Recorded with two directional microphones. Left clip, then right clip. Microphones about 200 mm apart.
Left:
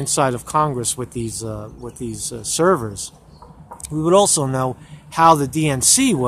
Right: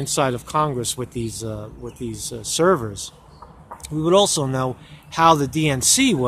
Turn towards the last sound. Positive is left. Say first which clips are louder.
# left 1 dB
turn(degrees=0)  # may be behind; listen again after turning